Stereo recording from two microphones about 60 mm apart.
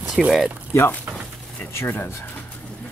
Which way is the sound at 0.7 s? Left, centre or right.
Left.